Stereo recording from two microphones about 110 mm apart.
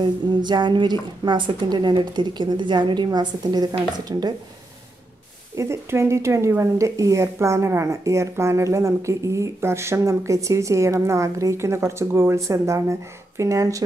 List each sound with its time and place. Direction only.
0.0 s a woman's voice: 45° right (ahead or behind)
5.6 s speech: 25° right (ahead or behind)